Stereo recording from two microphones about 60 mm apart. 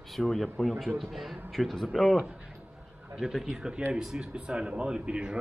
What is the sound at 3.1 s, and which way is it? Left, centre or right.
Speech, centre.